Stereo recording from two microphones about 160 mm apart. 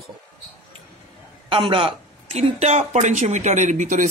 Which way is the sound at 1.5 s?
35° right (ahead or behind).